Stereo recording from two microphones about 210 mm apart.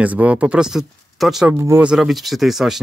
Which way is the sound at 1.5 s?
10° right (ahead or behind).